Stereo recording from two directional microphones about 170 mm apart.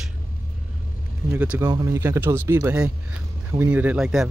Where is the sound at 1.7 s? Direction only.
20° right (ahead or behind).